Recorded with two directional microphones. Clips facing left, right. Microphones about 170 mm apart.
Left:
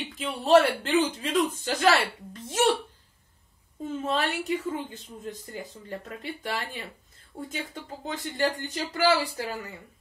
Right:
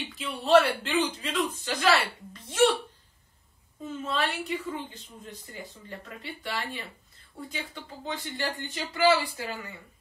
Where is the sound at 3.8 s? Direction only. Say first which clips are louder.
Left 3 dB; 45° left (ahead or behind).